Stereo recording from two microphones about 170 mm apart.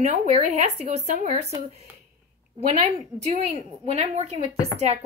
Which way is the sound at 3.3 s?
40° right (ahead or behind).